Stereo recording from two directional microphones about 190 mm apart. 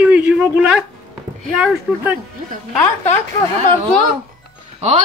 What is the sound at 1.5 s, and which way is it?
Speech, 5° right (ahead or behind).